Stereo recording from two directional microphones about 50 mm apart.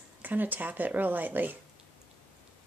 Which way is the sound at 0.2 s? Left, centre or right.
Right.